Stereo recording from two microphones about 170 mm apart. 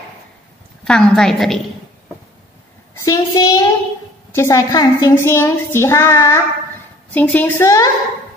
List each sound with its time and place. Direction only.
0.8 s a woman's voice: 5° left (ahead or behind)
3.0 s a woman's voice: 20° left (ahead or behind)